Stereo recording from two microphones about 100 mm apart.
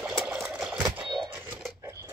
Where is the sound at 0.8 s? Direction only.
20° right (ahead or behind).